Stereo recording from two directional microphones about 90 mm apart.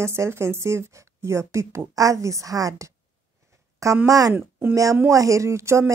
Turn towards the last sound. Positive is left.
turn(degrees=-30)  # may be behind; listen again after turning